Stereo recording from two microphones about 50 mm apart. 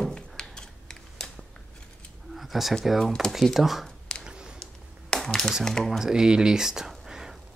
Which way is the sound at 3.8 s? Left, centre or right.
Centre.